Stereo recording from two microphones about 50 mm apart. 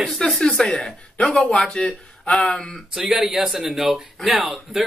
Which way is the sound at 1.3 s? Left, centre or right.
Left.